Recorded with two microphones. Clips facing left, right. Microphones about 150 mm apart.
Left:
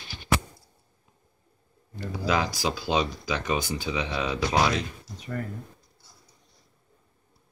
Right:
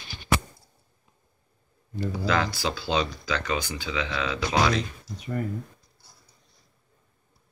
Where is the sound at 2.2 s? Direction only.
10° left (ahead or behind).